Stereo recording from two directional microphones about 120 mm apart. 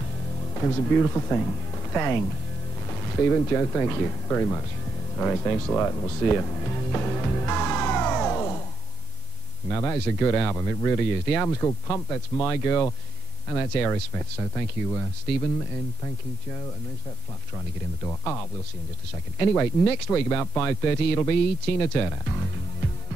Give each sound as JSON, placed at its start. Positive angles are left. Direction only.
{"t": 0.6, "sound": "speech", "side_deg": 15}
{"t": 6.3, "sound": "music", "side_deg": 15}
{"t": 9.7, "sound": "speech", "side_deg": 15}
{"t": 18.0, "sound": "speech", "side_deg": 10}
{"t": 19.4, "sound": "speech", "side_deg": 15}